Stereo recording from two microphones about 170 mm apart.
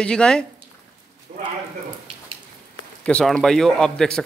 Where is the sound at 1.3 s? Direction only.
45° right (ahead or behind).